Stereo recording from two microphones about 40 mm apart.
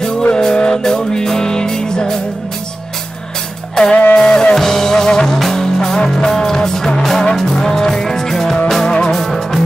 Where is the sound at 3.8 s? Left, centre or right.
Centre.